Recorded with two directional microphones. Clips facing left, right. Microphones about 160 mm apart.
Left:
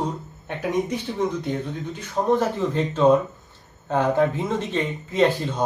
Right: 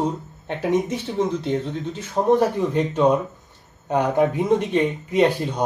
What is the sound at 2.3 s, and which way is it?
Speech, 15° right (ahead or behind).